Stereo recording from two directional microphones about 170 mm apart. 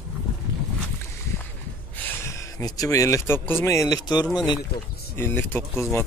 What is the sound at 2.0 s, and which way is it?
Speech, 15° left (ahead or behind).